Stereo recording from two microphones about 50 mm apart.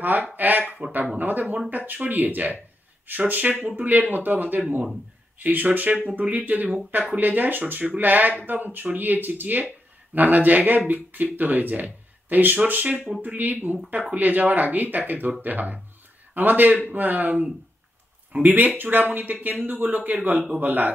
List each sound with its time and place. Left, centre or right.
0.0 s speech: right